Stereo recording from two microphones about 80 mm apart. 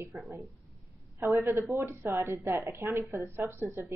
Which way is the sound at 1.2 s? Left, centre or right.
Right.